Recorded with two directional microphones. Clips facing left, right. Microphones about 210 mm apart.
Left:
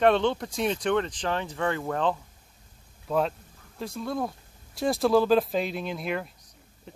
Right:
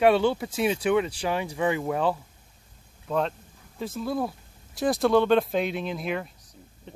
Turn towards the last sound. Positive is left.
turn(degrees=0)  # may be behind; listen again after turning